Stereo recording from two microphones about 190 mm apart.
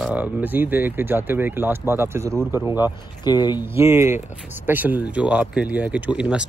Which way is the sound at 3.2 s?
20° left (ahead or behind).